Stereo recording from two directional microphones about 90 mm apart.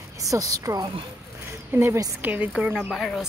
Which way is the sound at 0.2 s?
40° right (ahead or behind).